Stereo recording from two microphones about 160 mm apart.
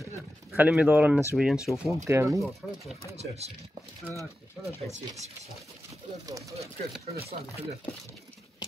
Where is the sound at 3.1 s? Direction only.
40° right (ahead or behind).